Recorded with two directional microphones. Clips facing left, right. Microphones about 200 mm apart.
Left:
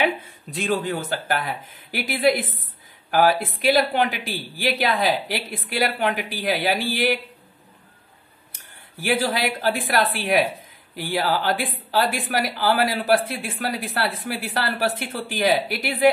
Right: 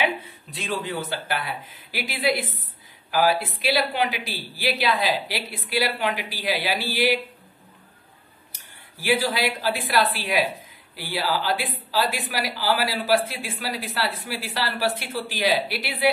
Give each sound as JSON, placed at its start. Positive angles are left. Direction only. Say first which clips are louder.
{"t": 0.0, "sound": "a man's voice", "louder": "left 3 dB", "side_deg": 45}
{"t": 8.5, "sound": "a woman's voice", "louder": "left 3 dB", "side_deg": 50}